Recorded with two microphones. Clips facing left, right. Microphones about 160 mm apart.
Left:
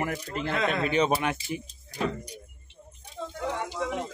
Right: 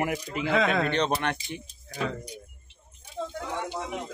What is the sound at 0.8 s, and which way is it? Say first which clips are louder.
Speech: left 2 dB; 5° left (ahead or behind).